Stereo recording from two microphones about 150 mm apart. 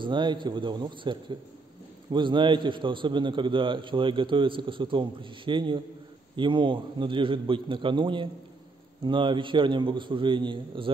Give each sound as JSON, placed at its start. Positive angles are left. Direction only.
{"t": 0.0, "sound": "a man's voice", "side_deg": -30}